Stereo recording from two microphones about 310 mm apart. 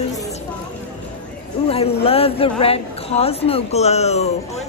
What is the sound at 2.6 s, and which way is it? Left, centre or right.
Speech, centre.